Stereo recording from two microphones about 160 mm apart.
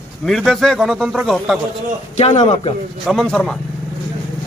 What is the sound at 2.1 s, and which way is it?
Speech, 40° left (ahead or behind).